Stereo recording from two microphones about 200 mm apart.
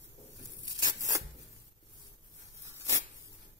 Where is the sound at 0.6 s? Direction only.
20° right (ahead or behind).